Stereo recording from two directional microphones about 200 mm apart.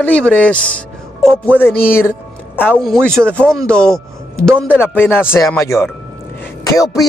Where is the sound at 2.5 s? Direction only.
10° left (ahead or behind).